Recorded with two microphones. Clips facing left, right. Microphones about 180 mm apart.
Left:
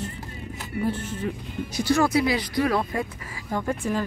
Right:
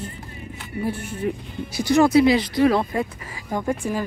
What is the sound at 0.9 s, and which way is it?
Speech, 10° right (ahead or behind).